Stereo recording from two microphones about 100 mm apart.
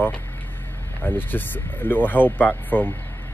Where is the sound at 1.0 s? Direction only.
20° left (ahead or behind).